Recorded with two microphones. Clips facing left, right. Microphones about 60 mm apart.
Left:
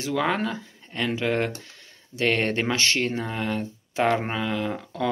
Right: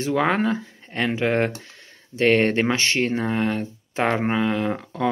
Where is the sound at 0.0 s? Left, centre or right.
Right.